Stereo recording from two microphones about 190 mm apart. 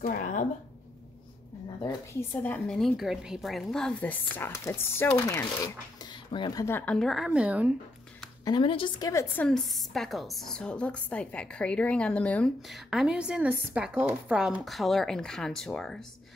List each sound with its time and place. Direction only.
0.0 s a sound: 45° left (ahead or behind)
1.8 s speech: 20° left (ahead or behind)
2.4 s a woman's voice: 5° left (ahead or behind)
5.9 s speech: 25° left (ahead or behind); by 7.7 s 5° right (ahead or behind)
8.5 s a woman's voice: 25° left (ahead or behind); by 16.1 s 5° left (ahead or behind)